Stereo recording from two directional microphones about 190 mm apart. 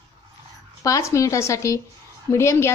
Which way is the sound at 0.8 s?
15° left (ahead or behind).